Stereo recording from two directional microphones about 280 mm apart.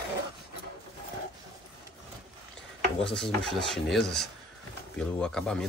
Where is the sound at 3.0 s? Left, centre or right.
Centre.